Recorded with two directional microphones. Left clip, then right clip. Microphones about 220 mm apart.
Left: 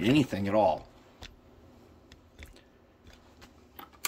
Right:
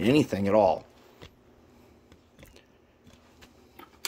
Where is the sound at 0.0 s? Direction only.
20° right (ahead or behind).